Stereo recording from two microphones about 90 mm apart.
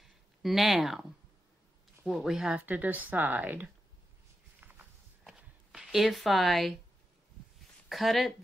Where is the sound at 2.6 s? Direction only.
20° right (ahead or behind).